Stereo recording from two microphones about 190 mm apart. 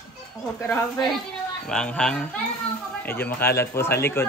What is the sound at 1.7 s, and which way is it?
A man's voice, 5° left (ahead or behind).